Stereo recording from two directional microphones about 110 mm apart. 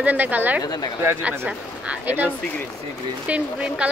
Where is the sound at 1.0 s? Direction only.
15° right (ahead or behind).